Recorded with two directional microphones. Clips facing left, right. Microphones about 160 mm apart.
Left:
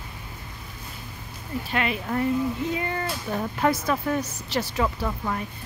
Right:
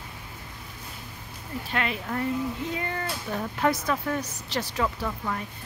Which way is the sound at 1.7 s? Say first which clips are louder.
Left 3 dB; 10° left (ahead or behind).